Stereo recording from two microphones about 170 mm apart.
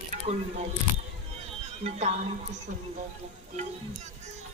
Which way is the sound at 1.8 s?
35° right (ahead or behind).